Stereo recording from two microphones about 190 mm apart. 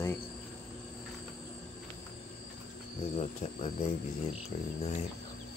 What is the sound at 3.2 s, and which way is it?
Speech, 35° left (ahead or behind).